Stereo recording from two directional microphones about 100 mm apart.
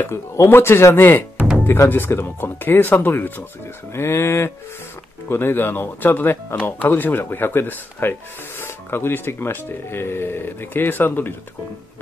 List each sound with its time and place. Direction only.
0.0 s speech: 25° left (ahead or behind)
1.4 s music: 15° right (ahead or behind)
1.7 s speech: 20° left (ahead or behind)